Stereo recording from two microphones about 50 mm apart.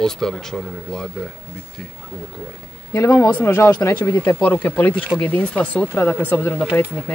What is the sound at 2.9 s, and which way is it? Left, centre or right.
Speech, left.